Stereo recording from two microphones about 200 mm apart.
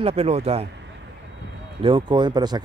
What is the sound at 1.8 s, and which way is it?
Speech, 25° right (ahead or behind).